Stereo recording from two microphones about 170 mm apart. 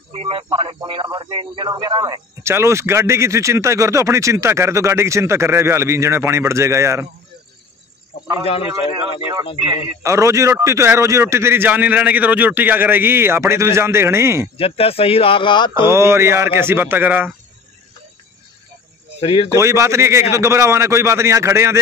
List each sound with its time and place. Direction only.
0.1 s a man's voice: 30° right (ahead or behind); by 7.1 s 15° right (ahead or behind)
10.0 s a man's voice: 15° right (ahead or behind)
14.6 s speech: 35° left (ahead or behind)
15.7 s a man's voice: 15° right (ahead or behind)
19.1 s speech: 35° left (ahead or behind)
19.5 s a man's voice: 15° right (ahead or behind)